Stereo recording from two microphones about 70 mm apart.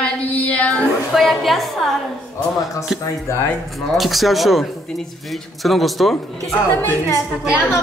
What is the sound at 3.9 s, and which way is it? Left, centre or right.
Speech, centre.